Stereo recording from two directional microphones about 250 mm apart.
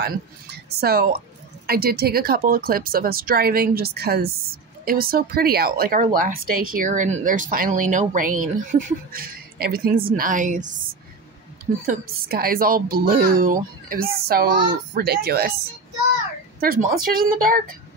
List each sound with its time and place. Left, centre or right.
0.0 s speech: right
11.8 s speech: right
16.5 s speech: right